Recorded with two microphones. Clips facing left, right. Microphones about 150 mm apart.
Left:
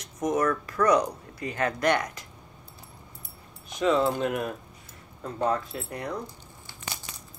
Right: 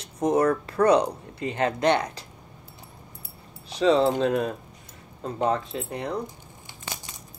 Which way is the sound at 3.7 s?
30° right (ahead or behind).